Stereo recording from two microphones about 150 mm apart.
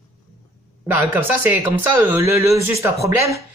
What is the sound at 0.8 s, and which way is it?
Speech, 15° right (ahead or behind).